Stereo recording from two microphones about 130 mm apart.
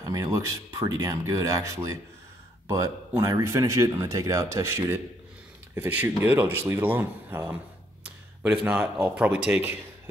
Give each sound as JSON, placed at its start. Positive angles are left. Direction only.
{"t": 0.0, "sound": "speech", "side_deg": -25}